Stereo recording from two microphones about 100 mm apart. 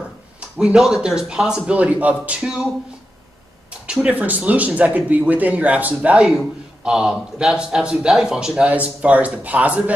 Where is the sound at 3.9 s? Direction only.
15° right (ahead or behind).